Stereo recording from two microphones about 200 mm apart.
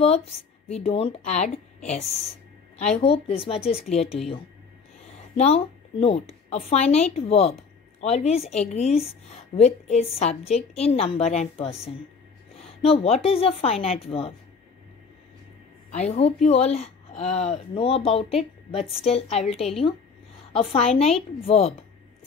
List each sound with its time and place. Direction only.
0.0 s speech: 30° left (ahead or behind)
3.0 s speech: 30° left (ahead or behind)
5.4 s a woman's voice: 30° left (ahead or behind)
12.8 s speech: 30° left (ahead or behind)
15.9 s speech: 30° left (ahead or behind)
18.8 s a woman's voice: 5° right (ahead or behind)
19.0 s speech: 30° left (ahead or behind)
19.5 s a woman's voice: centre (ahead or behind)
20.7 s speech: 30° left (ahead or behind)